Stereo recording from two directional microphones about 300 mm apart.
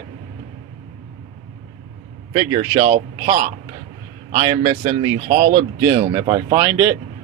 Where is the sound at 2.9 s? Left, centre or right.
Right; by 7.0 s centre.